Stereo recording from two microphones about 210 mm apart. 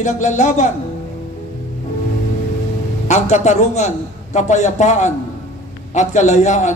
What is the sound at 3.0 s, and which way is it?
A man's voice, 35° left (ahead or behind).